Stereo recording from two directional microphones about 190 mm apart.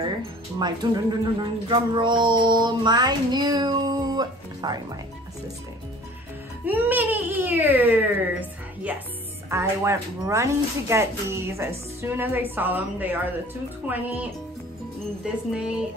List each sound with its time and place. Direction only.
0.8 s speech: 25° right (ahead or behind)
6.6 s speech: 10° right (ahead or behind)
15.2 s wind chime: 5° right (ahead or behind)